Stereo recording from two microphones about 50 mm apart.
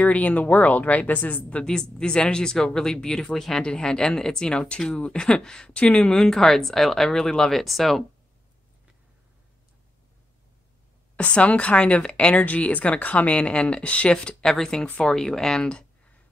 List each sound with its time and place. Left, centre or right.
0.0 s speech: left
1.6 s speech: centre
6.1 s speech: centre
11.1 s speech: left
14.4 s speech: centre